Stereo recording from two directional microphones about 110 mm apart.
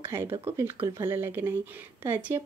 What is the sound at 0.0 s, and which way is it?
Speech, 20° right (ahead or behind).